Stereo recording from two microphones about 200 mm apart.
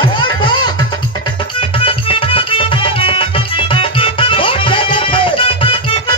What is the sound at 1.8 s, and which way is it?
Music, 25° left (ahead or behind).